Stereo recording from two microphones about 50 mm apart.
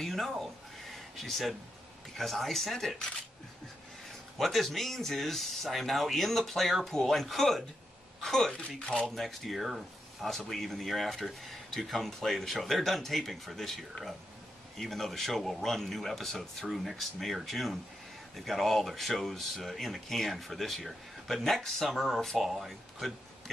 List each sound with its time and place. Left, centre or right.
0.0 s speech: centre
4.4 s speech: centre
9.1 s speech: centre